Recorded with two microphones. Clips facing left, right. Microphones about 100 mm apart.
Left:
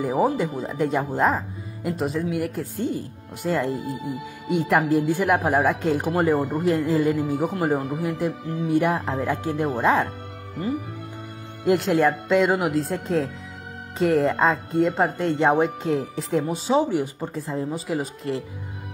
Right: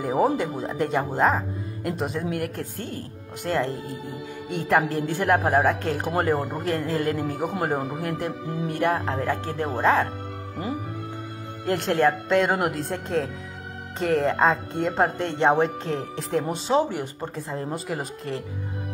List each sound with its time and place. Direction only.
0.0 s speech: centre (ahead or behind)
9.1 s speech: 15° left (ahead or behind)
11.6 s speech: 5° left (ahead or behind)